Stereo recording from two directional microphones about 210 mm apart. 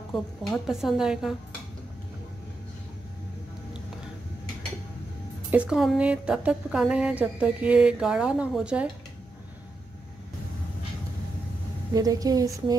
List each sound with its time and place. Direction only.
0.1 s speech: centre (ahead or behind)
5.5 s speech: 5° right (ahead or behind)
11.9 s a woman's voice: 15° right (ahead or behind)